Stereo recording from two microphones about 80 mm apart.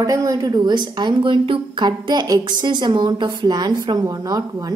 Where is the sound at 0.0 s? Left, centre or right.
Right.